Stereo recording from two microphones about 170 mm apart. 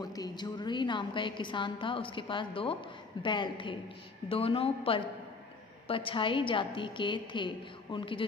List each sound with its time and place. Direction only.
0.0 s a woman's voice: 25° left (ahead or behind)